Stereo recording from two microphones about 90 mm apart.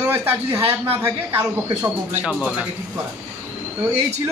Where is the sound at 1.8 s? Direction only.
20° right (ahead or behind).